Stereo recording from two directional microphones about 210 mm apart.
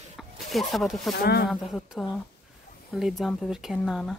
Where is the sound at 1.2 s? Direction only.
50° left (ahead or behind).